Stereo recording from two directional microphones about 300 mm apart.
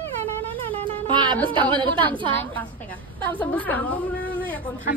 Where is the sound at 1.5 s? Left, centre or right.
Centre.